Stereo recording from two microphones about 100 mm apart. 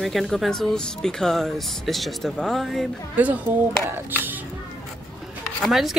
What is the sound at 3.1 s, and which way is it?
Speech, 15° right (ahead or behind).